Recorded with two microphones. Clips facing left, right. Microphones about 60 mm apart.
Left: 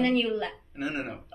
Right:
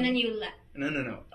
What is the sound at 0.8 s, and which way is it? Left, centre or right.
Speech, right.